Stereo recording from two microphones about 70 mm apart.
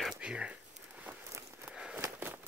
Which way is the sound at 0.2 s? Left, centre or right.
Centre.